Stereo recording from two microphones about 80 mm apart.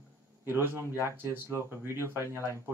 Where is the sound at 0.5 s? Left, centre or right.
Right.